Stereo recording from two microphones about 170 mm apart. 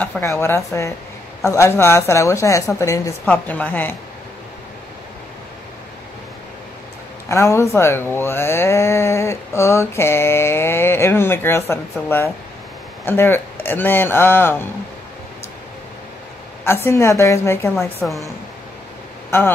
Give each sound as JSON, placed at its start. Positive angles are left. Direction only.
{"t": 0.2, "sound": "a woman's voice", "side_deg": 15}
{"t": 7.2, "sound": "speech", "side_deg": 15}
{"t": 16.6, "sound": "speech", "side_deg": 15}